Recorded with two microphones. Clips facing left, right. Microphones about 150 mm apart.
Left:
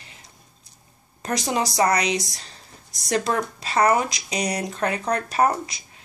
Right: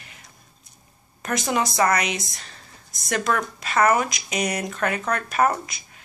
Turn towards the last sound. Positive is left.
turn(degrees=30)  # may be behind; listen again after turning